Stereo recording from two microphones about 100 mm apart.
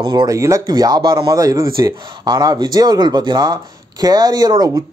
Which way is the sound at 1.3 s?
35° right (ahead or behind).